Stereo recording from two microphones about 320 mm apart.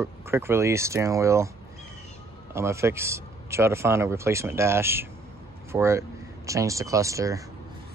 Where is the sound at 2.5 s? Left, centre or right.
Centre.